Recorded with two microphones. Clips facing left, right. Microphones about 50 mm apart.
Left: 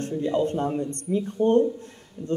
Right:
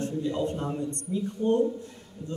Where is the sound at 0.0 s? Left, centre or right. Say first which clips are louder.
Left 4 dB; left.